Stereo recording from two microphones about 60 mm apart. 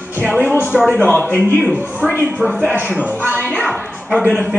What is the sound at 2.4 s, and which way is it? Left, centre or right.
Speech, centre.